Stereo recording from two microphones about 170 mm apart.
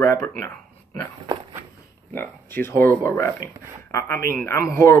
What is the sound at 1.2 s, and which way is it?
Walk, 30° right (ahead or behind).